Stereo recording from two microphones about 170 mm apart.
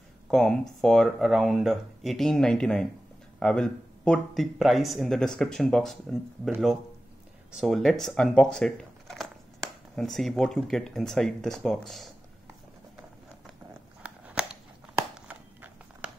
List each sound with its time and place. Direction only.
0.3 s speech: 5° left (ahead or behind)
7.5 s speech: centre (ahead or behind)
14.0 s a sound: 5° right (ahead or behind)